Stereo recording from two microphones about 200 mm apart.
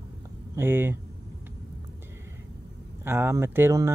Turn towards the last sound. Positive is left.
turn(degrees=-15)  # may be behind; listen again after turning